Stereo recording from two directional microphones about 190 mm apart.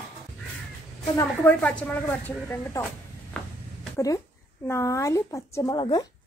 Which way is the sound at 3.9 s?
15° left (ahead or behind).